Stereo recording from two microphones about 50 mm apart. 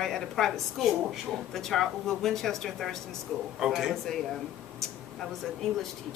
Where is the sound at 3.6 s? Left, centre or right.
Centre.